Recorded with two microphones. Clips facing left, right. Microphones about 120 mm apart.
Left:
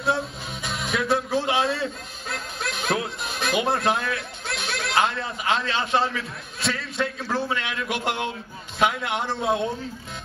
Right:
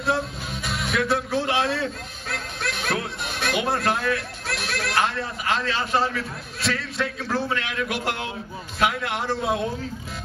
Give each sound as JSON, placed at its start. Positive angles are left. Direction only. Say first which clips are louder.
{"t": 0.0, "sound": "a man's voice", "louder": "even", "side_deg": 0}